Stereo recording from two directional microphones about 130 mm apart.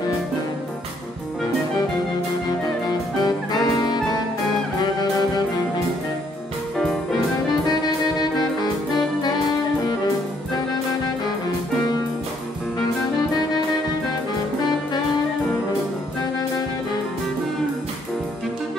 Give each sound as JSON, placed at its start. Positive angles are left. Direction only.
{"t": 2.9, "sound": "music", "side_deg": 30}
{"t": 8.2, "sound": "music", "side_deg": 30}